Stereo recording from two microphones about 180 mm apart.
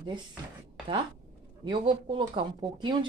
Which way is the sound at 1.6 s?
25° right (ahead or behind).